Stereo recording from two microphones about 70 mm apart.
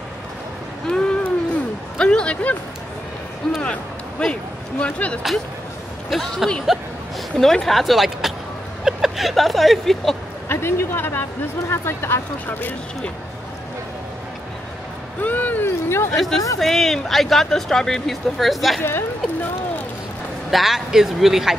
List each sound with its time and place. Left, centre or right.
0.8 s a sound: centre
3.4 s speech: centre
6.0 s speech: centre
8.8 s vehicle: centre
10.5 s speech: left
15.2 s speech: left
16.1 s speech: centre
18.8 s speech: left
20.5 s speech: centre